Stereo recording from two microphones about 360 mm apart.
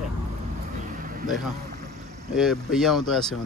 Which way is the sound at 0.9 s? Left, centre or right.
Right.